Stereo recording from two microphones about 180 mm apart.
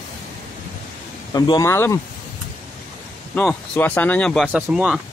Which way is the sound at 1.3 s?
25° left (ahead or behind).